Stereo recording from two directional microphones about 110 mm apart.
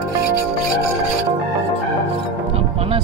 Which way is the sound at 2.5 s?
65° right (ahead or behind).